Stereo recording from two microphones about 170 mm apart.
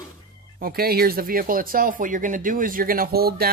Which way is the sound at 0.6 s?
65° right (ahead or behind).